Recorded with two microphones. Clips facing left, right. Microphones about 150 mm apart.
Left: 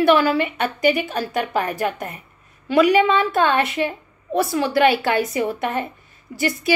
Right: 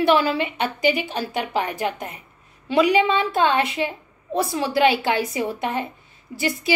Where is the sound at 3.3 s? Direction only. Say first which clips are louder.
Left 1 dB; 55° left (ahead or behind).